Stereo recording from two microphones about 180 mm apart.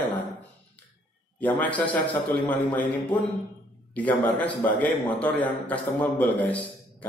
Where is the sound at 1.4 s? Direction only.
10° left (ahead or behind).